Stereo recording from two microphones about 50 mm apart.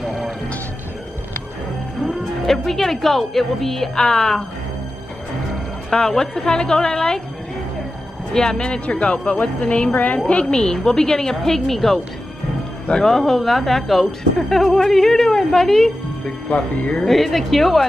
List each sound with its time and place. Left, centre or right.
0.0 s music: centre
2.0 s a woman's voice: centre
5.9 s a woman's voice: centre
8.3 s speech: centre
10.4 s a woman's voice: centre